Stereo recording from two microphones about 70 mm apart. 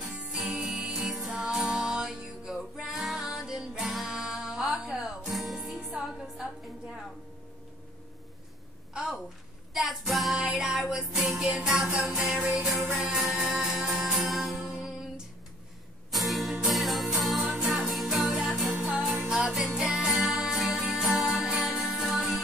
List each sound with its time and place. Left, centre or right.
0.0 s music: centre
0.4 s music: centre
8.9 s a sound: centre
9.8 s music: centre